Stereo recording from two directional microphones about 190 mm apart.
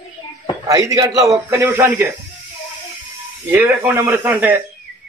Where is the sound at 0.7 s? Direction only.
15° right (ahead or behind).